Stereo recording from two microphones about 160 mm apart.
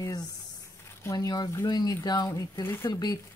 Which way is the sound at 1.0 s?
25° left (ahead or behind).